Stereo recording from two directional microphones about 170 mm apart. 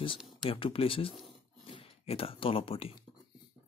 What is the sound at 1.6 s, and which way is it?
Speech, 35° left (ahead or behind).